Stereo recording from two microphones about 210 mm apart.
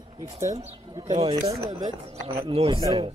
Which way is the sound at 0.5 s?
30° right (ahead or behind).